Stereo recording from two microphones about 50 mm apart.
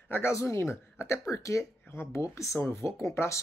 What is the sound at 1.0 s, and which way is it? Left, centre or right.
Speech, left.